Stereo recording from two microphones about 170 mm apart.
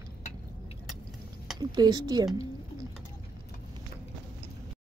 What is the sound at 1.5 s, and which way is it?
Speech, 25° right (ahead or behind).